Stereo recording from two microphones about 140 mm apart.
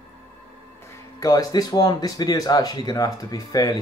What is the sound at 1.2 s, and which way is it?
Speech, 25° left (ahead or behind).